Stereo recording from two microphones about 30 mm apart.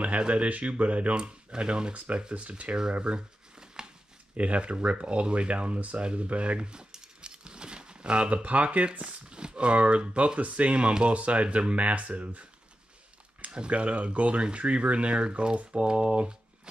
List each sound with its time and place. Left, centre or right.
0.3 s speech: right
1.1 s speech: right
2.3 s speech: right
3.0 s speech: right
3.5 s a sound: right
4.4 s speech: right
5.8 s speech: right
6.7 s a sound: right
8.5 s speech: right
9.3 s speech: right
11.1 s speech: right
13.4 s speech: right